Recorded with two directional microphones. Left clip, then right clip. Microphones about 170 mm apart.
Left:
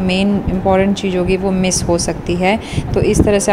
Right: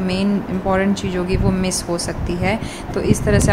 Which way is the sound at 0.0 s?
20° left (ahead or behind).